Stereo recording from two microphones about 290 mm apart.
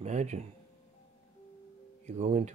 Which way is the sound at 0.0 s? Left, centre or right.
Right.